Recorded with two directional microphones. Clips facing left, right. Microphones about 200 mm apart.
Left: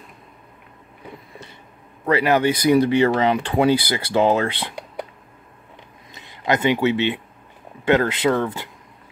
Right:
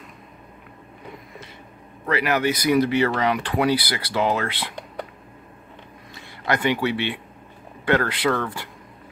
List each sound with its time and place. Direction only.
2.0 s speech: 30° left (ahead or behind)
6.1 s speech: 20° left (ahead or behind)